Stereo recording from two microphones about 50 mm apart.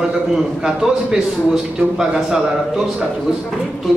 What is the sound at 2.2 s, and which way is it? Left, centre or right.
A man's voice, centre.